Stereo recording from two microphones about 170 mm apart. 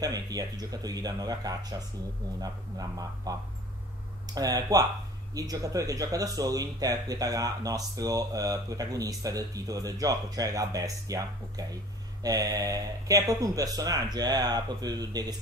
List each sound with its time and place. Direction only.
0.0 s speech: 20° right (ahead or behind)